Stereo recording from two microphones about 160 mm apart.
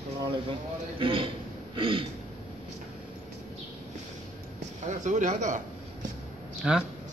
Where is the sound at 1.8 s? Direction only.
30° right (ahead or behind).